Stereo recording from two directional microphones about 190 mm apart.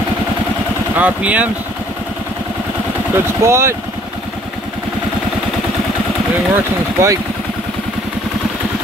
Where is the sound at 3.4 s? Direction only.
15° right (ahead or behind).